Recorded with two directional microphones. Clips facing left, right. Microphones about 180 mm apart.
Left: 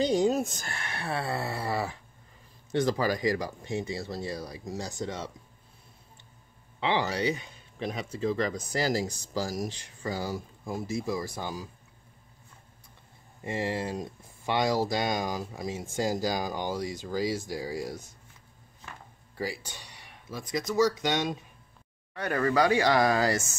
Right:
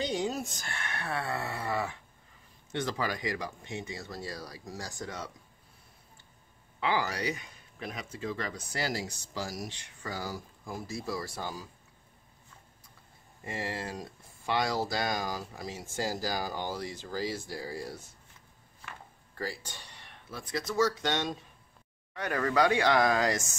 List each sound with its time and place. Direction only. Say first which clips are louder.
0.0 s speech: left 7 dB; 40° left (ahead or behind); by 5.3 s 25° left (ahead or behind)
6.8 s speech: left 3 dB; 25° left (ahead or behind)
13.4 s speech: left 6 dB; 20° left (ahead or behind)
19.3 s speech: left 3 dB; 10° left (ahead or behind)